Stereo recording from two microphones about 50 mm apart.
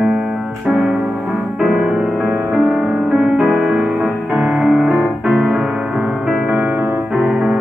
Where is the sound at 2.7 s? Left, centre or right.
Right.